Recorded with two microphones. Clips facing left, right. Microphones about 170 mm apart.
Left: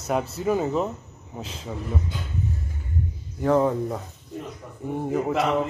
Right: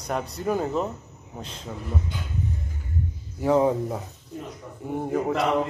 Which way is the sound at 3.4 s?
10° right (ahead or behind).